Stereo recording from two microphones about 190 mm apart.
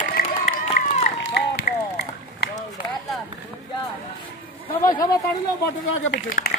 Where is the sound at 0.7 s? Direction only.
35° left (ahead or behind).